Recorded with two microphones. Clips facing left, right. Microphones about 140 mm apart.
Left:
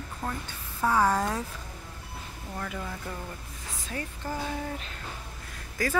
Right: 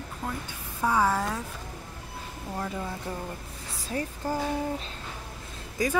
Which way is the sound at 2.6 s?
20° right (ahead or behind).